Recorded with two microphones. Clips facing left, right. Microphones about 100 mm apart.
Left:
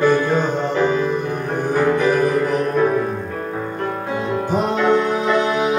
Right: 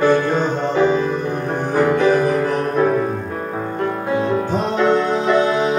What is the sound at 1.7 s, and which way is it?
Music, 15° right (ahead or behind).